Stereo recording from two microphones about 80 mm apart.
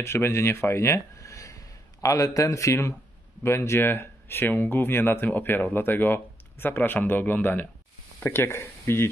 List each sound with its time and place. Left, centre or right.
0.0 s speech: left